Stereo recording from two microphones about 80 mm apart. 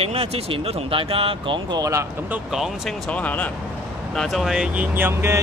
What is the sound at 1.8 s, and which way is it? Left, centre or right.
Speech, right.